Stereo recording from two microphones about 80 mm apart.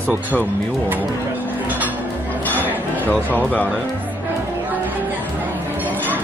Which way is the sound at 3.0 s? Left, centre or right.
Left.